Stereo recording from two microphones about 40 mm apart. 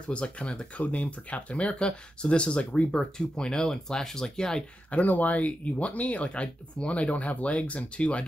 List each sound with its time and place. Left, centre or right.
0.1 s speech: left
3.0 s speech: centre
5.0 s speech: left